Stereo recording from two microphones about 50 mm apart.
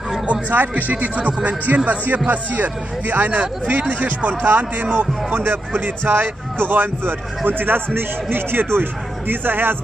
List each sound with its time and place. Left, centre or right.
0.3 s a man's voice: right